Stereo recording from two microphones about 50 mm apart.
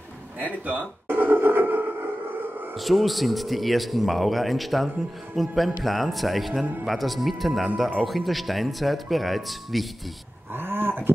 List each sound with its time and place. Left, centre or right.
0.5 s speech: right
1.0 s a sound: right
2.7 s speech: centre
10.5 s roaring cats: right